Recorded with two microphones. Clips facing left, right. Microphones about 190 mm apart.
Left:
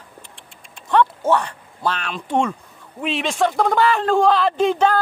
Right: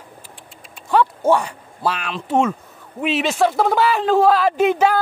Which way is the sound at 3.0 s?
5° right (ahead or behind).